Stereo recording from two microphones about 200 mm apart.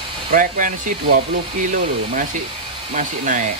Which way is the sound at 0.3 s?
40° right (ahead or behind).